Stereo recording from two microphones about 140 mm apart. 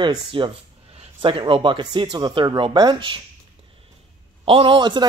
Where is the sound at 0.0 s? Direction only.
35° right (ahead or behind).